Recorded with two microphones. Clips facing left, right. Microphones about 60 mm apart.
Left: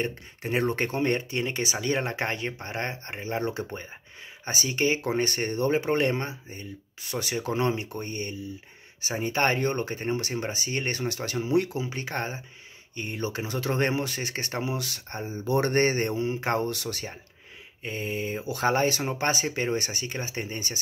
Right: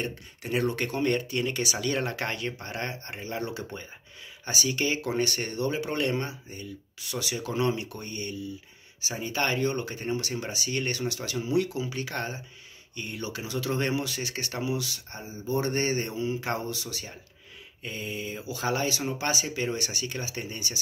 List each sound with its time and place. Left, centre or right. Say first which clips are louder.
0.0 s speech: left 3 dB; left
15.4 s speech: left 4 dB; left